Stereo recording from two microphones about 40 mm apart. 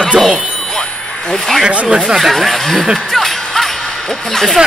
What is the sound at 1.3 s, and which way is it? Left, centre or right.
Speech, centre.